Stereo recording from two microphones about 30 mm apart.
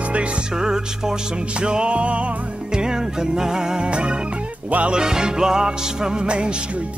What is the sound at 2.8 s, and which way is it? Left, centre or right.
Music, right.